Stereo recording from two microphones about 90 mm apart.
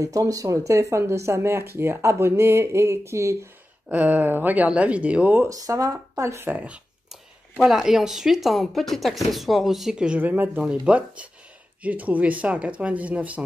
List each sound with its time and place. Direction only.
0.0 s speech: 40° right (ahead or behind)
3.9 s speech: 20° right (ahead or behind)
5.5 s speech: 40° right (ahead or behind)
6.5 s speech: 15° right (ahead or behind)
7.1 s speech: 5° right (ahead or behind); by 10.6 s 20° right (ahead or behind)
10.6 s speech: 10° right (ahead or behind)